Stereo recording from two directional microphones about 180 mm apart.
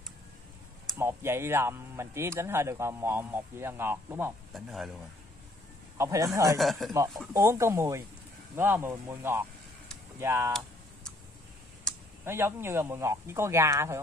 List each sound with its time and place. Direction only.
0.9 s speech: 15° right (ahead or behind)
4.6 s speech: centre (ahead or behind)
5.9 s speech: 20° right (ahead or behind)
6.6 s speech: centre (ahead or behind)
7.3 s speech: 15° right (ahead or behind)
11.9 s a sound: 5° left (ahead or behind)
12.3 s speech: 15° right (ahead or behind)